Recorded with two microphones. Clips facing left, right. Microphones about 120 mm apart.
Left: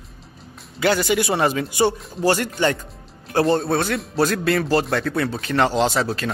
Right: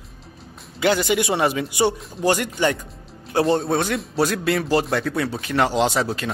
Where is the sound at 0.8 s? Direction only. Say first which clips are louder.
Even; 15° right (ahead or behind).